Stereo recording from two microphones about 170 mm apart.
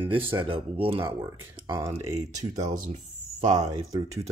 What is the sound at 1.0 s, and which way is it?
Speech, 15° right (ahead or behind).